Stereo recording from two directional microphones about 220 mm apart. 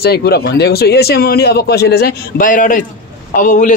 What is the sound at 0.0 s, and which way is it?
A man's voice, 45° left (ahead or behind).